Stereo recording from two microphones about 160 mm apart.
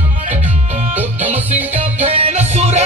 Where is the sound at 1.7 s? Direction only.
40° right (ahead or behind).